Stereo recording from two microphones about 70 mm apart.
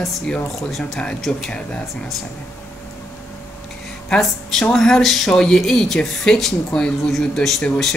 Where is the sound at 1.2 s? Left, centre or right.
Centre.